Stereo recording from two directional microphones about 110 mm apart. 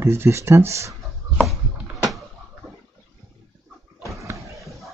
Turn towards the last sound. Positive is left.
turn(degrees=-30)  # may be behind; listen again after turning